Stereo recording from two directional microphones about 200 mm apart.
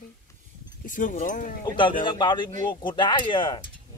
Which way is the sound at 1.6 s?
20° left (ahead or behind).